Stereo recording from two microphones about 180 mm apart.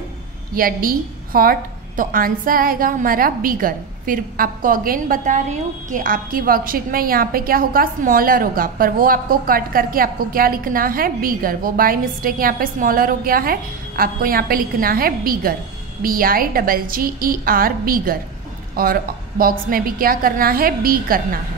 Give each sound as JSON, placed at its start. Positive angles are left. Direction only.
{"t": 0.6, "sound": "a woman's voice", "side_deg": -50}